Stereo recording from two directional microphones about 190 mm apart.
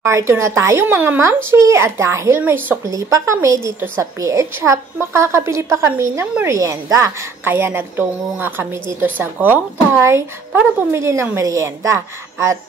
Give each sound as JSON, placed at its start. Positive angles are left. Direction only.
{"t": 0.0, "sound": "speech", "side_deg": -15}